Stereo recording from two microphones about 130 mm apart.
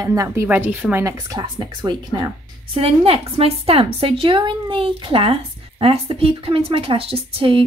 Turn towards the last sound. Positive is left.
turn(degrees=-45)  # may be behind; listen again after turning